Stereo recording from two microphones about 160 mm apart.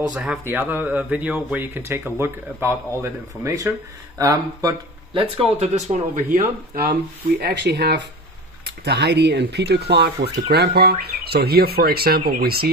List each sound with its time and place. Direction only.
0.1 s speech: 5° right (ahead or behind); by 5.2 s 25° right (ahead or behind)
5.4 s speech: 40° right (ahead or behind)
6.3 s speech: 65° right (ahead or behind)
7.4 s speech: 85° right